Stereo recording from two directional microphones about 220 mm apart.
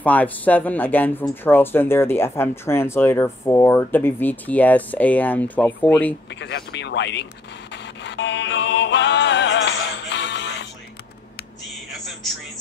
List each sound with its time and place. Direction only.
0.0 s speech: 5° left (ahead or behind)
6.4 s speech: 50° left (ahead or behind)
7.7 s music: 55° left (ahead or behind)